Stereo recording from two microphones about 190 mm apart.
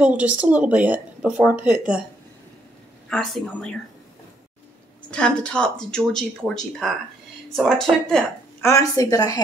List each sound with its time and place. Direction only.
0.0 s speech: 5° right (ahead or behind)
3.1 s speech: centre (ahead or behind)
5.1 s speech: 5° left (ahead or behind)
8.6 s a woman's voice: 15° left (ahead or behind)